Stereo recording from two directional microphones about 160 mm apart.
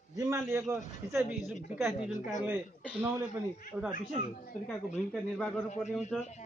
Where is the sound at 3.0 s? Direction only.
10° right (ahead or behind).